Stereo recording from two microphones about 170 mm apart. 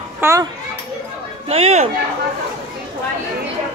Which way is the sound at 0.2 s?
15° right (ahead or behind).